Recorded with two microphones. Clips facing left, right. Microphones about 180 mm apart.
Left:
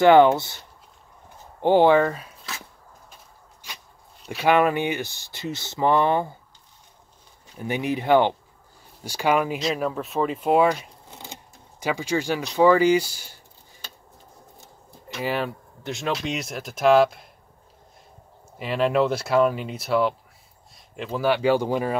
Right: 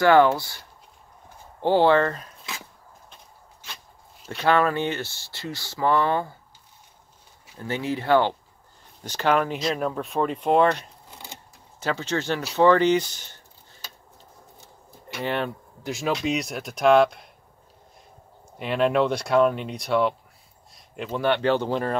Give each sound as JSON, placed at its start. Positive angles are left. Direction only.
{"t": 0.0, "sound": "speech", "side_deg": 20}
{"t": 1.6, "sound": "a sound", "side_deg": 15}
{"t": 4.2, "sound": "a sound", "side_deg": 5}
{"t": 4.5, "sound": "speech", "side_deg": 15}
{"t": 7.5, "sound": "speech", "side_deg": 15}
{"t": 11.1, "sound": "vehicle", "side_deg": 20}
{"t": 11.8, "sound": "speech", "side_deg": 10}
{"t": 15.1, "sound": "speech", "side_deg": 5}
{"t": 18.6, "sound": "speech", "side_deg": 0}